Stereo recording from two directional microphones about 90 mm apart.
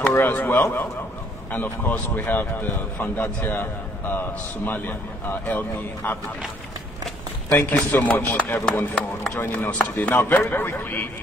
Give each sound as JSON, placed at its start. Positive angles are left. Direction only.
{"t": 0.1, "sound": "a man's voice", "side_deg": 20}
{"t": 7.4, "sound": "a man's voice", "side_deg": 25}